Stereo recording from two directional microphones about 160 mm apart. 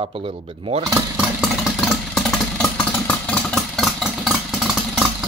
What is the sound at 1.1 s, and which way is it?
Vehicle, centre (ahead or behind).